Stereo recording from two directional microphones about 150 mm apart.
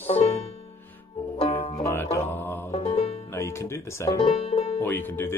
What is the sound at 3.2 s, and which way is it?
Speech, 15° left (ahead or behind).